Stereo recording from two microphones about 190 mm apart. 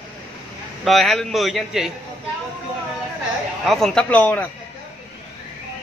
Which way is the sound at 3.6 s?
Centre (ahead or behind).